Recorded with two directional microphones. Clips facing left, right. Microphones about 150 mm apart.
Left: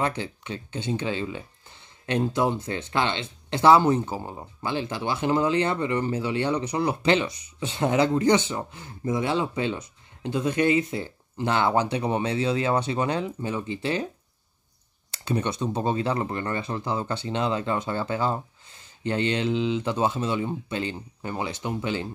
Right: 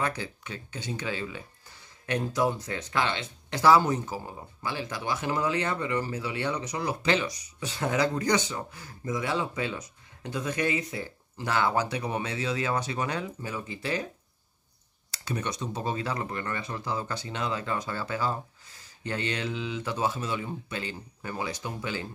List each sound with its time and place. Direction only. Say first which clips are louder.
0.0 s speech: left 4 dB; 25° left (ahead or behind)
15.0 s speech: left 6 dB; 30° left (ahead or behind)